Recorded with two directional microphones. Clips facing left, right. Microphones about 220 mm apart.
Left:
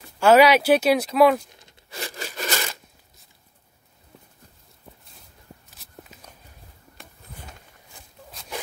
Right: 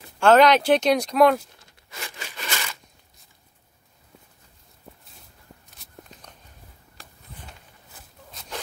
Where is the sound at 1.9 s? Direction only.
35° left (ahead or behind).